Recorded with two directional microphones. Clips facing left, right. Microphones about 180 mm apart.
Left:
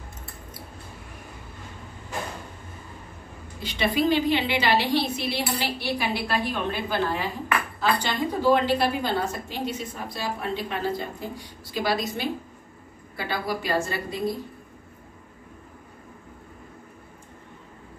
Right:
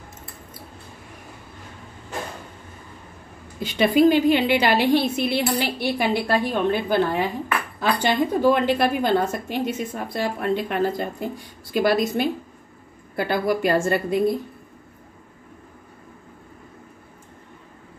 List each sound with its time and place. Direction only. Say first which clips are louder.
3.6 s a woman's voice: right 7 dB; 50° right (ahead or behind)